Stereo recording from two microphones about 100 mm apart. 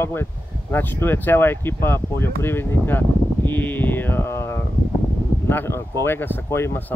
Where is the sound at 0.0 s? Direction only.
25° left (ahead or behind).